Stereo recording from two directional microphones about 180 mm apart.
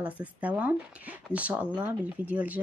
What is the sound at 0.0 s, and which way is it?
Speech, 10° right (ahead or behind).